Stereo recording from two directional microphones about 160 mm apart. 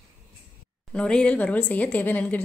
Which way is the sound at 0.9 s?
5° left (ahead or behind).